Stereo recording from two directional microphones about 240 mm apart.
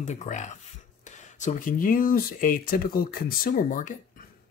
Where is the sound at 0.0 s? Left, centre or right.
Left.